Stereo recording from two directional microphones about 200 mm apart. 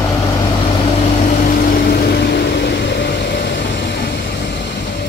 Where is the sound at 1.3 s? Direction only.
40° left (ahead or behind).